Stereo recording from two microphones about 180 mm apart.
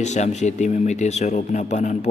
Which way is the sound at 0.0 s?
40° left (ahead or behind).